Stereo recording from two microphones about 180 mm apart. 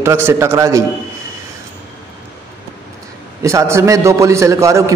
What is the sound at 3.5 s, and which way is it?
A man's voice, 15° right (ahead or behind).